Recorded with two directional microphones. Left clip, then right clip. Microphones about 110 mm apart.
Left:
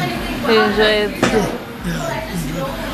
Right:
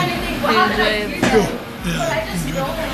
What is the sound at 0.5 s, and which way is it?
Speech, 25° left (ahead or behind).